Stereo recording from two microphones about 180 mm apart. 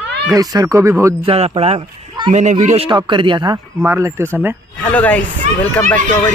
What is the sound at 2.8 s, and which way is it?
Speech, 25° right (ahead or behind).